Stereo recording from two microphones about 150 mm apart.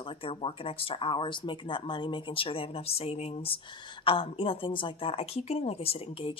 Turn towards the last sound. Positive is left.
turn(degrees=40)  # may be behind; listen again after turning